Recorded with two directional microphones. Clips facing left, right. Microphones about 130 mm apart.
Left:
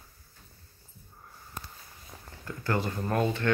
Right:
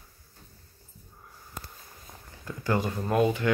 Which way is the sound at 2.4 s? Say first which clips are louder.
Right 2 dB; 15° right (ahead or behind).